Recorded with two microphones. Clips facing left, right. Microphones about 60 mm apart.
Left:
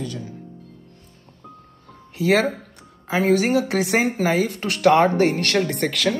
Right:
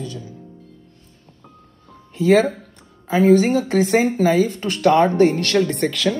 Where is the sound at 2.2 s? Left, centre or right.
Left.